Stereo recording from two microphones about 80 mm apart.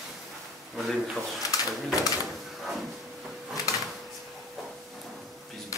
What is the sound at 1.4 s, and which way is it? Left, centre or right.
Bird, left.